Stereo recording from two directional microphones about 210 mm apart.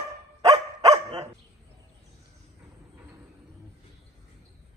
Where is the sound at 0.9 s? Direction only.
30° right (ahead or behind).